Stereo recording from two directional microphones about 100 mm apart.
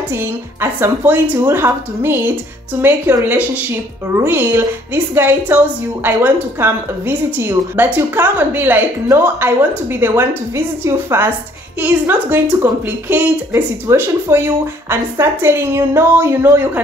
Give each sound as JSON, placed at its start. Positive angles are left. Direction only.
{"t": 0.1, "sound": "a woman's voice", "side_deg": -25}